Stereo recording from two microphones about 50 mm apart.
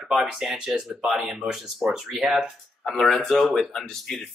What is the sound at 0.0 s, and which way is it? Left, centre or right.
Speech, centre.